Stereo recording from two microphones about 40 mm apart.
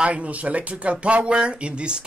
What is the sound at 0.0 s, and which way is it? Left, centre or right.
Speech, right.